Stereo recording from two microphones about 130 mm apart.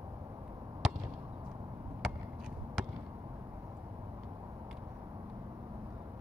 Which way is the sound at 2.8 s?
Centre (ahead or behind).